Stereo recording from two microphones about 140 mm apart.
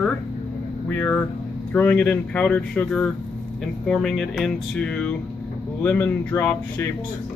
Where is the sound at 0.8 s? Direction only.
10° left (ahead or behind).